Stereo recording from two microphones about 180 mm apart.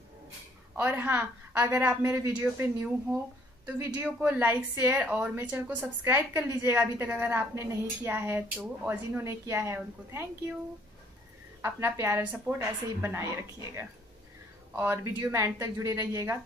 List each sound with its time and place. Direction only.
0.7 s a woman's voice: 10° right (ahead or behind)
11.6 s a woman's voice: 15° right (ahead or behind)